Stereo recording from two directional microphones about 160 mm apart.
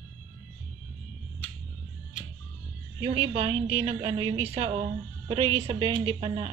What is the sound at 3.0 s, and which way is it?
A woman's voice, 35° right (ahead or behind).